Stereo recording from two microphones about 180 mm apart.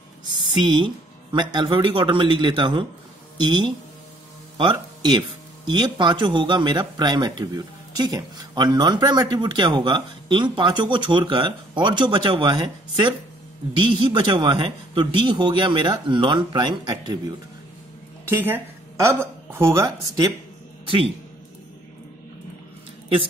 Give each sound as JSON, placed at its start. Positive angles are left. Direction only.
{"t": 0.6, "sound": "a man's voice", "side_deg": -25}
{"t": 18.2, "sound": "speech", "side_deg": -10}
{"t": 20.8, "sound": "speech", "side_deg": -30}